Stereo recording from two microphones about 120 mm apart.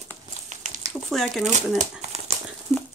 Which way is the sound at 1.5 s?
70° right (ahead or behind).